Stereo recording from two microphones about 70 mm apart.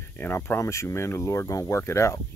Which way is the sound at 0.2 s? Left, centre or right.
Left.